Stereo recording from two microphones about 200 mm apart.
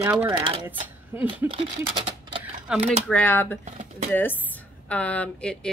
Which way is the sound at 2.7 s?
5° right (ahead or behind).